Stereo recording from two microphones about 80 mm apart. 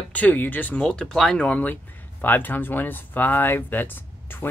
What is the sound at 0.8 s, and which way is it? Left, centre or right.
Speech, centre.